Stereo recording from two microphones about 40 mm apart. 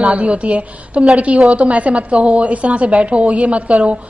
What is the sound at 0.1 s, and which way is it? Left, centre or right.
A woman's voice, right.